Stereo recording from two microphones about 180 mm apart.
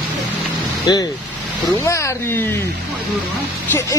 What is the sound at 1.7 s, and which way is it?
Speech, 15° left (ahead or behind).